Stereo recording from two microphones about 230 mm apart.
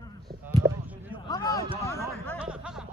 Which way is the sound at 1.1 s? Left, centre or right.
Centre.